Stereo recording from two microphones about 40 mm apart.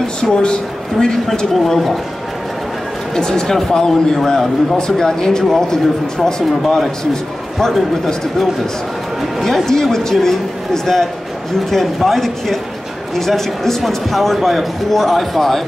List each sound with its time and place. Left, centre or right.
0.2 s speech: left
1.5 s speech: centre
3.2 s a man's voice: centre
6.6 s speech: centre
9.7 s a man's voice: centre